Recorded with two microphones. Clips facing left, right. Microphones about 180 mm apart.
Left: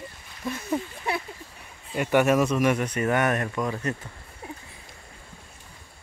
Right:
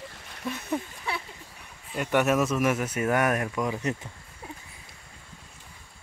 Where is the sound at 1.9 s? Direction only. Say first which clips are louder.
Left 3 dB; centre (ahead or behind).